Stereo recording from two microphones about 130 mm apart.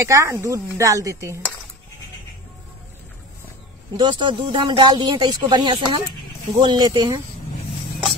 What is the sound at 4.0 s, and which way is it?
Speech, 35° right (ahead or behind).